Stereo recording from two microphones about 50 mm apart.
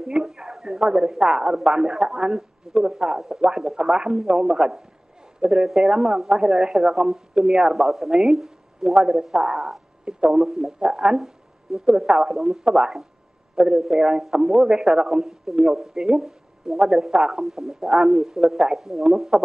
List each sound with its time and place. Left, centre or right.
0.0 s a sound: centre
1.2 s a man's voice: centre
10.4 s speech: centre
10.8 s a man's voice: centre